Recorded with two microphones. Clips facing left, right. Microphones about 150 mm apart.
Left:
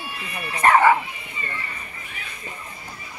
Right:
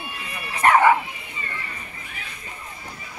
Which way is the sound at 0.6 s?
10° right (ahead or behind).